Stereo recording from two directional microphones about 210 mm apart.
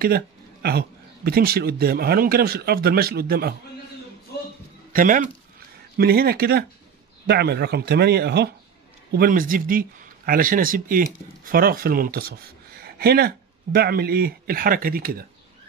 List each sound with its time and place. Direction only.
0.0 s speech: 50° right (ahead or behind)
4.9 s speech: 40° right (ahead or behind)